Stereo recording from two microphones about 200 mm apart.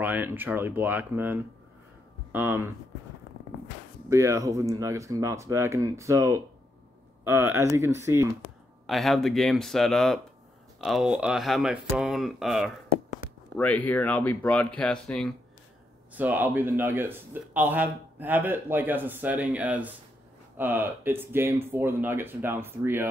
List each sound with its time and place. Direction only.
0.0 s speech: 10° right (ahead or behind)
4.1 s speech: 15° right (ahead or behind)
8.8 s speech: centre (ahead or behind)
16.2 s speech: 10° right (ahead or behind)